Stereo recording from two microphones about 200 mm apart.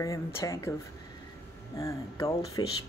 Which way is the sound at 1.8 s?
15° left (ahead or behind).